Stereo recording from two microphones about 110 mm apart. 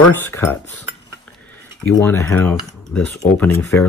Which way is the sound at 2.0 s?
20° left (ahead or behind).